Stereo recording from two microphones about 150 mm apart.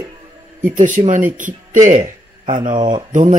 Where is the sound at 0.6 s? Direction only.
60° right (ahead or behind).